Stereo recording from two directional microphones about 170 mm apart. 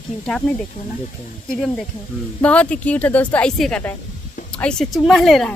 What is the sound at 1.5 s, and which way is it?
Speech, centre (ahead or behind).